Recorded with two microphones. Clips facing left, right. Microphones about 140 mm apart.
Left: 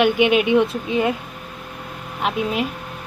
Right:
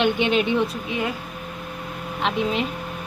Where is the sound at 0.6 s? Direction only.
25° left (ahead or behind).